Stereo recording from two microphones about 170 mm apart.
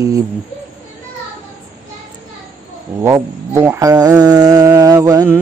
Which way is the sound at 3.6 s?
20° right (ahead or behind).